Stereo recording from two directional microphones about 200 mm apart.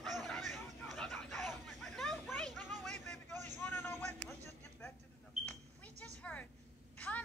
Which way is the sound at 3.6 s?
10° left (ahead or behind).